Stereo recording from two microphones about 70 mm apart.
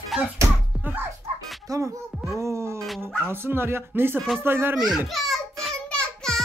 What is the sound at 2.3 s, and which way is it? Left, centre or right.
Music, right.